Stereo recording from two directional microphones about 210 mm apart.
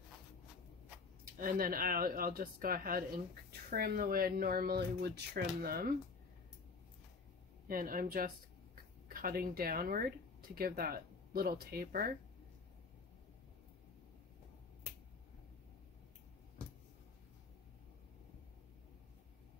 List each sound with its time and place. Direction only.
1.4 s speech: 40° right (ahead or behind)
7.6 s speech: 45° right (ahead or behind)